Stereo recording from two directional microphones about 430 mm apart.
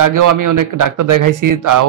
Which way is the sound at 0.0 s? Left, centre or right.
Right.